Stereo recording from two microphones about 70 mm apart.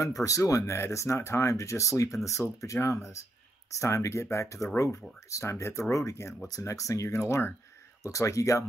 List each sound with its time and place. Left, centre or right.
0.0 s speech: left
6.4 s speech: left